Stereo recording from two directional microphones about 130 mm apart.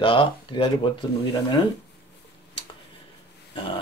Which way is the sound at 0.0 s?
40° left (ahead or behind).